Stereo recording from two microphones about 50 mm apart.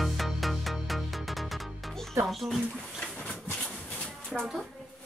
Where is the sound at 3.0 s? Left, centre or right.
Left.